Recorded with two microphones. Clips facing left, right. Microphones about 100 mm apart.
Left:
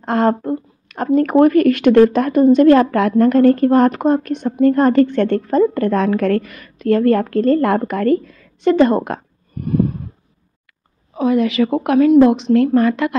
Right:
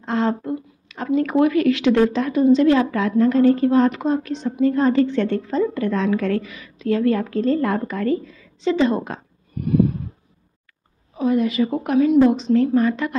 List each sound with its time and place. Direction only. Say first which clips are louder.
0.0 s a woman's voice: left 5 dB; 55° left (ahead or behind)
9.6 s a sound: even; 40° left (ahead or behind)
11.1 s a woman's voice: left 4 dB; 85° left